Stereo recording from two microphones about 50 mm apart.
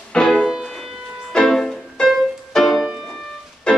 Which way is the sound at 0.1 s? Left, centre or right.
Centre.